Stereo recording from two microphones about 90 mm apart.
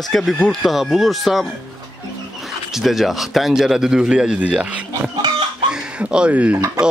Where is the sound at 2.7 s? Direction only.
Centre (ahead or behind).